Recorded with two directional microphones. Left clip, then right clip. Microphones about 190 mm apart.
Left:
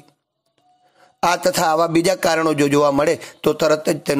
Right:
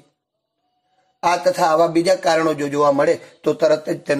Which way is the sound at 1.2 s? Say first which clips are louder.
Even; 35° left (ahead or behind).